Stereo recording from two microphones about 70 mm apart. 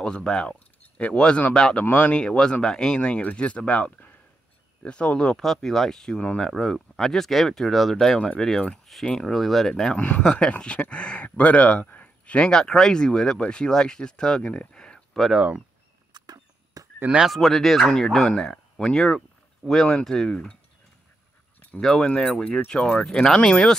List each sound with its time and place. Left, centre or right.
0.0 s speech: centre
9.9 s speech: centre
15.3 s speech: centre
16.1 s a sound: right
17.3 s speech: centre
21.8 s speech: centre